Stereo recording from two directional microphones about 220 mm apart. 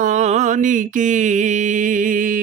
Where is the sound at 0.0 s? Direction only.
30° right (ahead or behind).